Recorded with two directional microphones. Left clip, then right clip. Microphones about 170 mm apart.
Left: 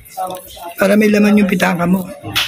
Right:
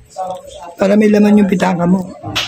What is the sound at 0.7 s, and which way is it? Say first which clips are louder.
A man's voice: right 1 dB; 15° right (ahead or behind).